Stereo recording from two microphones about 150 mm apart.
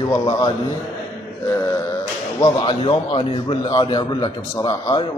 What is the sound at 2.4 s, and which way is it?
A man's voice, 30° left (ahead or behind).